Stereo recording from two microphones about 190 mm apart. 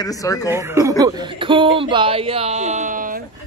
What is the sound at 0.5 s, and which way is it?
A man's voice, 15° right (ahead or behind).